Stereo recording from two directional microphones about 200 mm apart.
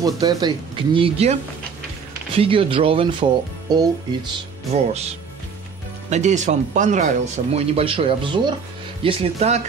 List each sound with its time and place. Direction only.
0.0 s speech: 20° right (ahead or behind)
6.0 s speech: 35° right (ahead or behind)